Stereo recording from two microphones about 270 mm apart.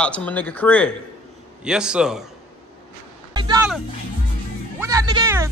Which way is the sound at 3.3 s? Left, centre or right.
Centre.